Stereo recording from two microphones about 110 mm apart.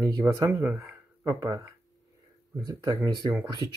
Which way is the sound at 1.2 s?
30° right (ahead or behind).